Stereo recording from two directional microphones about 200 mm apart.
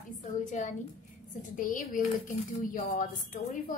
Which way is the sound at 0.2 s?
40° left (ahead or behind).